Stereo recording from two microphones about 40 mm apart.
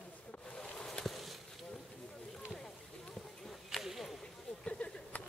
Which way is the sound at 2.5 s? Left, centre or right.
Centre.